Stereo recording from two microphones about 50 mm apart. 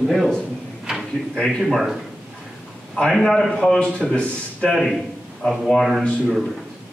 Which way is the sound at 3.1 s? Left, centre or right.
Centre.